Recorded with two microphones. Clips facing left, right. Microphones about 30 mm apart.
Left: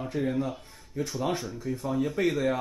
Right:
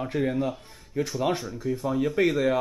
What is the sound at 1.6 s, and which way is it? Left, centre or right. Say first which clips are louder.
Speech: right 3 dB; centre.